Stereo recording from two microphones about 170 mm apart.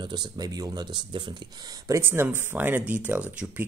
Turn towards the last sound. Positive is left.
turn(degrees=-10)  # may be behind; listen again after turning